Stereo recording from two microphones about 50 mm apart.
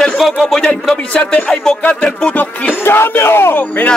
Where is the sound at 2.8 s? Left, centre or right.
Left.